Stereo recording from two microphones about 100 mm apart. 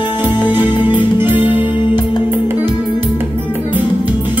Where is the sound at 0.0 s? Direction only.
20° right (ahead or behind).